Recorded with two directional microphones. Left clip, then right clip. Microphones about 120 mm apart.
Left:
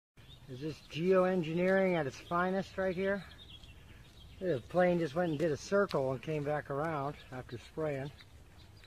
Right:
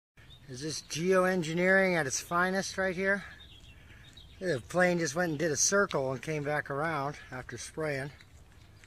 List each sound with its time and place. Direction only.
0.6 s speech: 20° right (ahead or behind)
4.4 s speech: 20° right (ahead or behind)